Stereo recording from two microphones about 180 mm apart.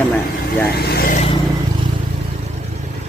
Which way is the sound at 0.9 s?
55° left (ahead or behind).